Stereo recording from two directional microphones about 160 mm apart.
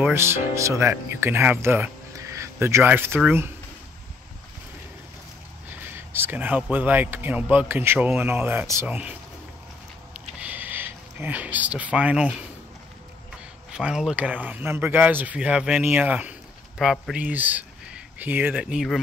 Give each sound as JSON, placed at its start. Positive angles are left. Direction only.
{"t": 0.0, "sound": "a man's voice", "side_deg": -15}
{"t": 5.7, "sound": "a man's voice", "side_deg": -15}
{"t": 10.4, "sound": "speech", "side_deg": -10}
{"t": 13.7, "sound": "speech", "side_deg": -5}